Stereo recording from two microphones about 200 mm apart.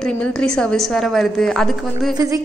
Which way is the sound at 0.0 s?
5° left (ahead or behind).